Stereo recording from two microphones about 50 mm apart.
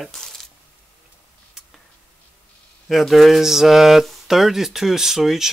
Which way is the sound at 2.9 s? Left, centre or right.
Centre.